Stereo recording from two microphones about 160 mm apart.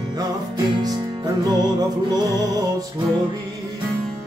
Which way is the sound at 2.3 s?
20° right (ahead or behind).